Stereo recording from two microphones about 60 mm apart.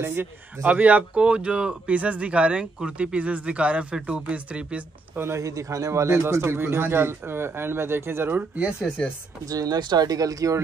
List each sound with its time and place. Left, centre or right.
0.0 s speech: right
0.7 s speech: right
5.1 s speech: right
5.4 s speech: right
8.5 s speech: centre
9.5 s speech: right